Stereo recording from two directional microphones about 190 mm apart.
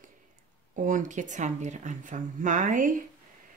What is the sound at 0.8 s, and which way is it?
Speech, 40° right (ahead or behind).